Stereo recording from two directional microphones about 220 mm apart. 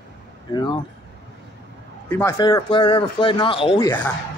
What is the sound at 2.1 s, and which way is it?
Speech, 10° left (ahead or behind).